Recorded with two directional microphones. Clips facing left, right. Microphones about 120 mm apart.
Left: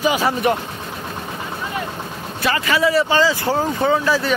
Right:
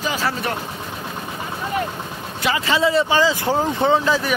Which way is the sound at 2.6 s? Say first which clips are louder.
Left 1 dB; 25° right (ahead or behind).